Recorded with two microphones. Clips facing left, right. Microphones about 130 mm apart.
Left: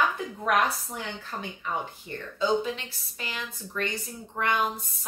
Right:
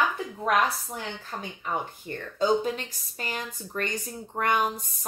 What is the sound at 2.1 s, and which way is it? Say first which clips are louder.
Speech: right 2 dB; 45° right (ahead or behind).